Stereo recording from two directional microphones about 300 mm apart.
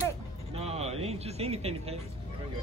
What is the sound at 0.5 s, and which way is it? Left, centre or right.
Speech, right.